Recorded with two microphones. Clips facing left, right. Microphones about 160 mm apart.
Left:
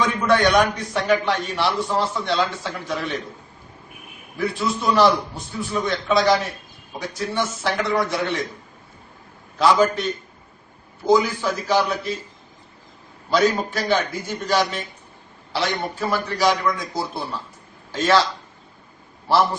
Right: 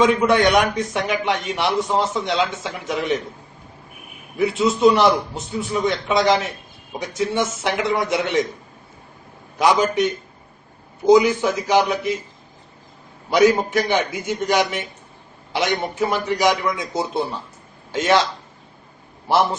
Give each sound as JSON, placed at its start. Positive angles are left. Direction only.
{"t": 0.0, "sound": "a man's voice", "side_deg": -20}
{"t": 4.4, "sound": "a man's voice", "side_deg": -20}
{"t": 9.6, "sound": "a man's voice", "side_deg": -20}
{"t": 13.3, "sound": "a man's voice", "side_deg": -20}